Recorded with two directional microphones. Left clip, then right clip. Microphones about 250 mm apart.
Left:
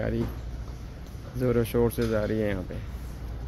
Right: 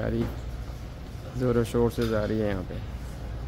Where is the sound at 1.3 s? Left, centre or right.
Centre.